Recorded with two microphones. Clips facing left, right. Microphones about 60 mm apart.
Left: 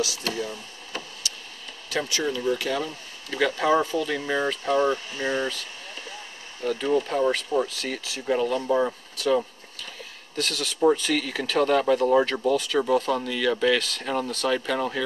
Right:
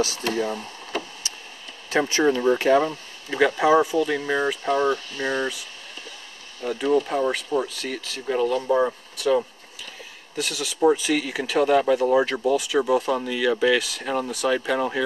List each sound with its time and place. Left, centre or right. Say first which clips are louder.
0.3 s a sound: right 5 dB; right
1.9 s speech: right 7 dB; right
3.3 s speech: right 4 dB; centre